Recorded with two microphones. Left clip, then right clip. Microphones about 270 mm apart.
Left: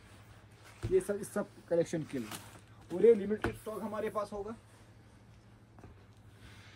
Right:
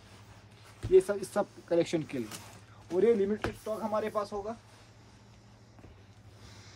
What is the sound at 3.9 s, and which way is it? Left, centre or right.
Speech, right.